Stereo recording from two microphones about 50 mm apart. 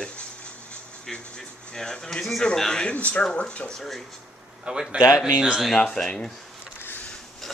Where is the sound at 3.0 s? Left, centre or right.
Left.